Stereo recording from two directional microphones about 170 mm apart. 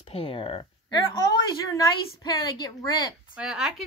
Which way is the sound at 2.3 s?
25° left (ahead or behind).